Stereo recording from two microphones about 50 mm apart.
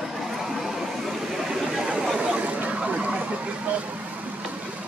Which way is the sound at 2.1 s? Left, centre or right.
Right.